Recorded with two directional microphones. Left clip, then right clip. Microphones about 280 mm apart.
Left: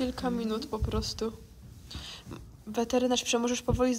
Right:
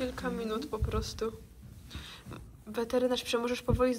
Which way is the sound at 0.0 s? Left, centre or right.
Centre.